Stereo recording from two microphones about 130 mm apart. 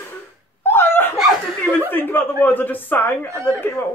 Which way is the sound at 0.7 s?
15° left (ahead or behind).